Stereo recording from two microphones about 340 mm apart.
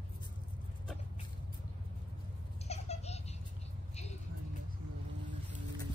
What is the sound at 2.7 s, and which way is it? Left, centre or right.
Babbling, centre.